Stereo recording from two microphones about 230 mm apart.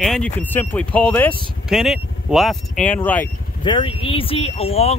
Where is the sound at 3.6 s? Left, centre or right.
Left.